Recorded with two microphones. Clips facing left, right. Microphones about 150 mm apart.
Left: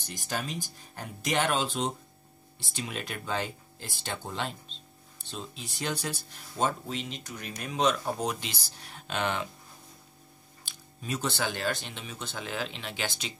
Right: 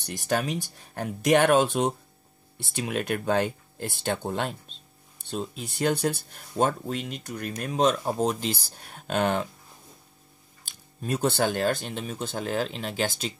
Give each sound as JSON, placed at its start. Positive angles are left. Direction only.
{"t": 0.0, "sound": "speech", "side_deg": -65}
{"t": 11.0, "sound": "speech", "side_deg": -55}